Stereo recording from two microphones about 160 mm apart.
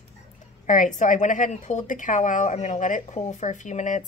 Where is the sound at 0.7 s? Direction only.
50° left (ahead or behind).